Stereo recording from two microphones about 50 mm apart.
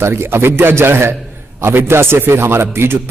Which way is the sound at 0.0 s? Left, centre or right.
Right.